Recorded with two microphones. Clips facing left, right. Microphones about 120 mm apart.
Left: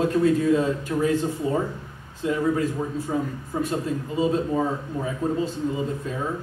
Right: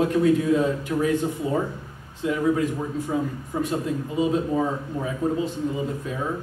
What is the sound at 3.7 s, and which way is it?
Speech, 15° right (ahead or behind).